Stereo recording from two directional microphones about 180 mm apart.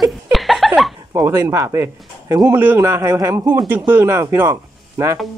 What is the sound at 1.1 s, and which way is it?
A man's voice, 15° right (ahead or behind).